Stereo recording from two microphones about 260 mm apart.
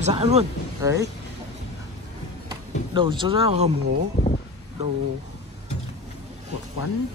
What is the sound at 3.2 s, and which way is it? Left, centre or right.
Speech, right.